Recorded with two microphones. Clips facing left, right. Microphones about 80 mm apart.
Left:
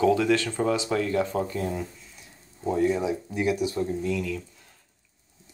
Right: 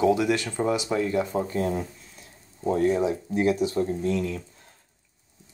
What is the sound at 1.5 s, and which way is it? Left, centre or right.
Speech, right.